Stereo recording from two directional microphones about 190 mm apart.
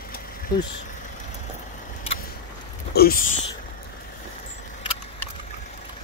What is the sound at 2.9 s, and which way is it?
Speech, 50° left (ahead or behind).